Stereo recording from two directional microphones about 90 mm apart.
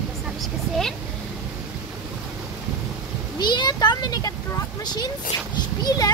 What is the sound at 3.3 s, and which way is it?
Speech, 55° left (ahead or behind).